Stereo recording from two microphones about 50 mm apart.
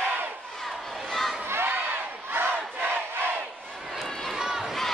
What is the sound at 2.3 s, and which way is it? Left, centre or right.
Crowd, right.